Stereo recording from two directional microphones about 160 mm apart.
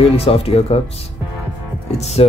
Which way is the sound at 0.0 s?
35° left (ahead or behind).